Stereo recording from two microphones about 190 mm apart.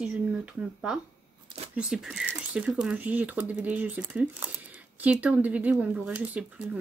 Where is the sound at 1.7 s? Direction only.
5° right (ahead or behind).